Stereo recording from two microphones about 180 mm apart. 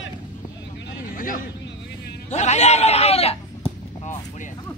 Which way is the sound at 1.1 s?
50° left (ahead or behind).